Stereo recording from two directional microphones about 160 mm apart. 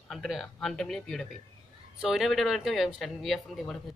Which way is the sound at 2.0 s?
Centre (ahead or behind).